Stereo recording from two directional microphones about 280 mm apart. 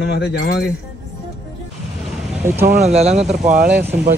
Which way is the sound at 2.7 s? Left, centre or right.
Right.